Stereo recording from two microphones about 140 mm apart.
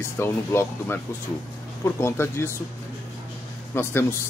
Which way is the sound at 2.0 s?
20° left (ahead or behind).